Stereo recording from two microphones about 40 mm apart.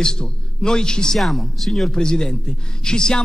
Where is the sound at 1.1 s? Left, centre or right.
Centre.